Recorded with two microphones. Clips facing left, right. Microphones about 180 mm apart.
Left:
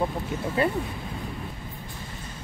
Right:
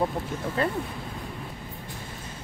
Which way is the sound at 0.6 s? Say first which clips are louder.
Left 3 dB; 5° left (ahead or behind).